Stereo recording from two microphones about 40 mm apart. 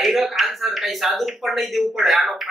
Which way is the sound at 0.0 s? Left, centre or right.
Centre.